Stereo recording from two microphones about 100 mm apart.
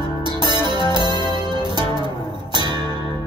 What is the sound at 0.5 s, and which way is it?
Music, 45° right (ahead or behind).